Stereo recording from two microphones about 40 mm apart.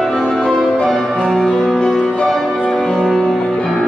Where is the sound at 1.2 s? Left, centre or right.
Centre.